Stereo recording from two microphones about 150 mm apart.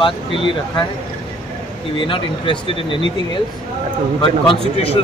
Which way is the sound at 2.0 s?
35° left (ahead or behind).